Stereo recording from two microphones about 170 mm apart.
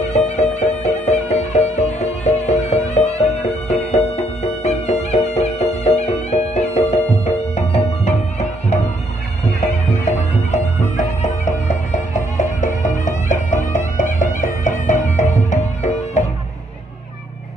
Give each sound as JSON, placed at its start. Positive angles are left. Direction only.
{"t": 0.0, "sound": "music", "side_deg": 40}
{"t": 10.5, "sound": "music", "side_deg": 45}